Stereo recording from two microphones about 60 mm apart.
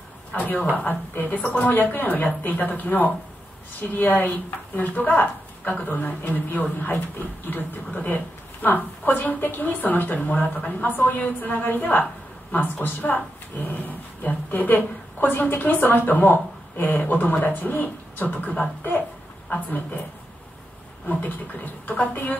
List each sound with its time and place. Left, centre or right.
0.3 s a woman's voice: left
21.8 s a woman's voice: left